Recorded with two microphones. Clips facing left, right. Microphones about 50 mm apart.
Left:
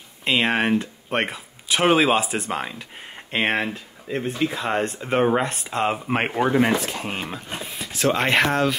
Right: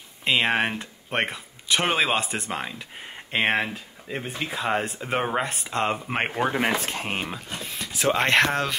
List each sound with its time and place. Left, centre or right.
0.2 s speech: centre
6.9 s speech: right
7.6 s a sound: centre
7.9 s speech: centre